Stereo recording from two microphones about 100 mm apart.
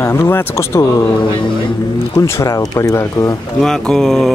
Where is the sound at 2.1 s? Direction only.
30° left (ahead or behind).